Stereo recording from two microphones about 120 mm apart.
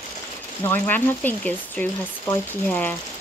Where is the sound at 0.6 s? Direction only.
15° left (ahead or behind).